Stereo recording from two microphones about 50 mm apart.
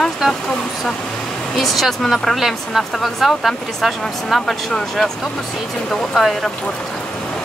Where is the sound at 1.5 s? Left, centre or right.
Centre.